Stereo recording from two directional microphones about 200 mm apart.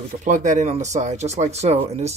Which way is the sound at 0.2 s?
40° right (ahead or behind).